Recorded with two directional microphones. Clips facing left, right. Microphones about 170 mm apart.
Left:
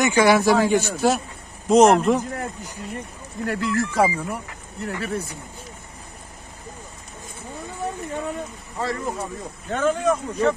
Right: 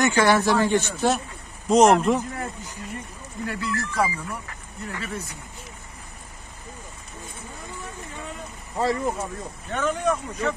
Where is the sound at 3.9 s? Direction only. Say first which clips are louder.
Left 3 dB; 50° left (ahead or behind).